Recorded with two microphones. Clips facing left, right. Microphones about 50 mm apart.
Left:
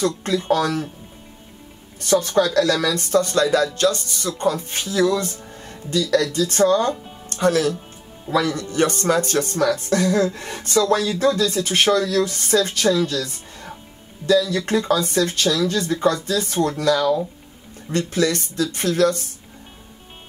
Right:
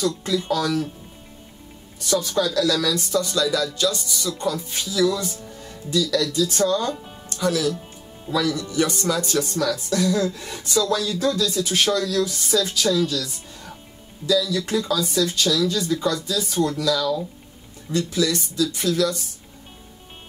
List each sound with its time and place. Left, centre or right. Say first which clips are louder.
0.0 s speech: left 2 dB; left
2.0 s speech: left 4 dB; left